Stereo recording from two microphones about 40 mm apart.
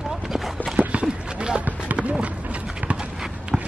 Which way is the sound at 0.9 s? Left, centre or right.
Right.